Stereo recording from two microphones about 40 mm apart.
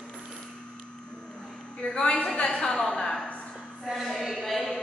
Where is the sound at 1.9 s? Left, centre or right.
Centre.